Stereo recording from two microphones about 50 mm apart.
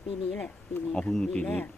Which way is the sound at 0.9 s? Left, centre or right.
Centre.